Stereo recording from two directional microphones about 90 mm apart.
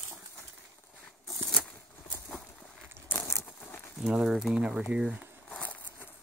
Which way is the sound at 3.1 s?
30° left (ahead or behind).